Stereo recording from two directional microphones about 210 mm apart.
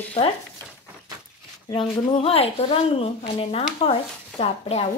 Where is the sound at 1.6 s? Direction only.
25° left (ahead or behind).